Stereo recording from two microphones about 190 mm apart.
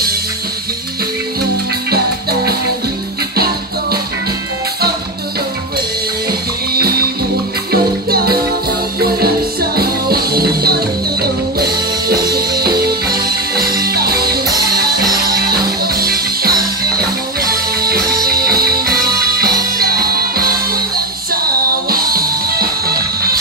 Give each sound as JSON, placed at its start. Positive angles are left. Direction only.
{"t": 6.7, "sound": "music", "side_deg": -55}